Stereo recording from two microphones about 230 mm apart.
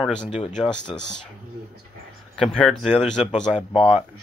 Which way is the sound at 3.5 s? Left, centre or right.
Left.